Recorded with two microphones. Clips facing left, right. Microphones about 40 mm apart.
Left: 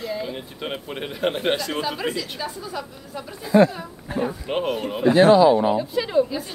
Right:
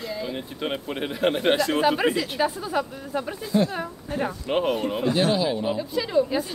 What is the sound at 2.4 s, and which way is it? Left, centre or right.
Speech, right.